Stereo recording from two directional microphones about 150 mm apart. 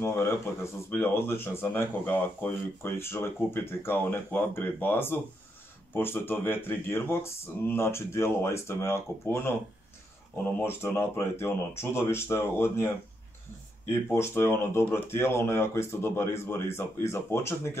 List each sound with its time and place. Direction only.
0.0 s speech: 15° left (ahead or behind)
10.6 s speech: 15° left (ahead or behind)